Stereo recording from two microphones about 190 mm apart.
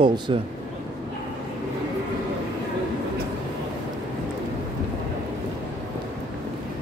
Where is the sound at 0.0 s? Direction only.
25° right (ahead or behind).